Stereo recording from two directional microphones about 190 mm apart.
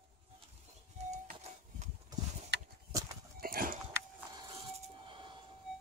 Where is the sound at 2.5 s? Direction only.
60° right (ahead or behind).